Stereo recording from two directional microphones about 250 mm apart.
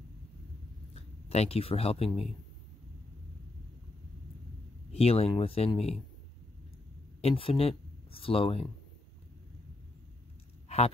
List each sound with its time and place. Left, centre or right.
0.9 s speech: left
4.9 s speech: left
7.2 s speech: left